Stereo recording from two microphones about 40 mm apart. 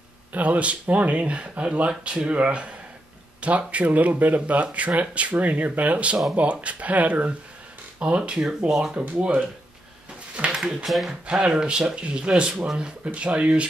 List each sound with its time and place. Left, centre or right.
0.3 s speech: right; by 8.9 s centre
10.5 s speech: centre